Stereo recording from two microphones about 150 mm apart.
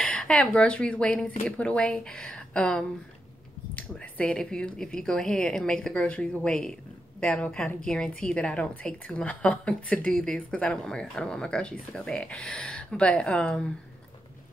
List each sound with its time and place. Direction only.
0.0 s speech: 5° left (ahead or behind)